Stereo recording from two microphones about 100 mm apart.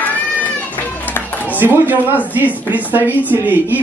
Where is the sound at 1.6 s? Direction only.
20° right (ahead or behind).